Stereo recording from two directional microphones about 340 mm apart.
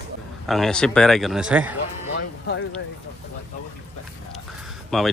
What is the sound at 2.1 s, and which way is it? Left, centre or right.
Music, left.